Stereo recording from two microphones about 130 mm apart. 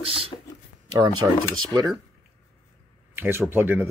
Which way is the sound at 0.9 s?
25° right (ahead or behind).